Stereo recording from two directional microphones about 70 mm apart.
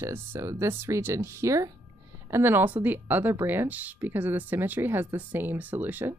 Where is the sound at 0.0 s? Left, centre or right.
Right.